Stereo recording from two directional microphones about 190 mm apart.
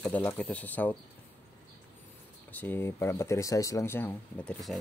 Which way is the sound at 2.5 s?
10° left (ahead or behind).